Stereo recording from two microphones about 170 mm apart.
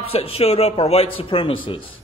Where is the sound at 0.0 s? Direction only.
35° left (ahead or behind).